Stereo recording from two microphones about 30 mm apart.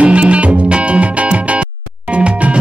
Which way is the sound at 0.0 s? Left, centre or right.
Right.